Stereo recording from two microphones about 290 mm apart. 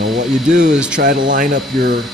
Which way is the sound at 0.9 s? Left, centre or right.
Right.